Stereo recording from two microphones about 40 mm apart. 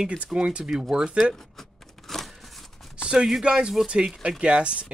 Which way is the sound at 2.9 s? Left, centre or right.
Right.